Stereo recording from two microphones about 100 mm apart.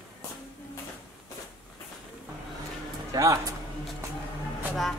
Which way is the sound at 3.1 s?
35° right (ahead or behind).